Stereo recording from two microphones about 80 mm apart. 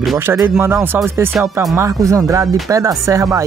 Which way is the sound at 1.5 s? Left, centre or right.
Right.